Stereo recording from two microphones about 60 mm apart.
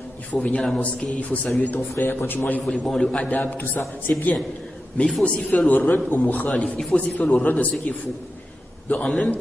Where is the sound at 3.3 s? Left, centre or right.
Left.